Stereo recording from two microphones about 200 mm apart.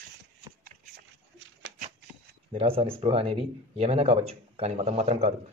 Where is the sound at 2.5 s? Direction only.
30° right (ahead or behind).